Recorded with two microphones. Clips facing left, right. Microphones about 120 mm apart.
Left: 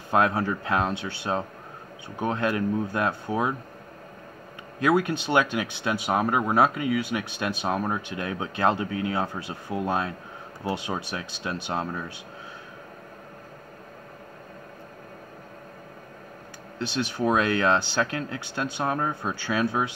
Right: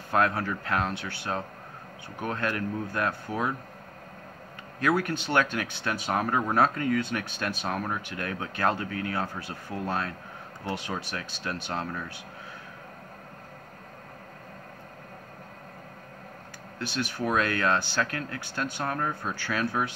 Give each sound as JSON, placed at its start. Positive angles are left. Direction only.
{"t": 0.1, "sound": "speech", "side_deg": 20}
{"t": 4.7, "sound": "speech", "side_deg": 20}
{"t": 16.7, "sound": "speech", "side_deg": 25}